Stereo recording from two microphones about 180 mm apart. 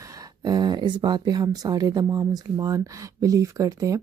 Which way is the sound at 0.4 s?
20° right (ahead or behind).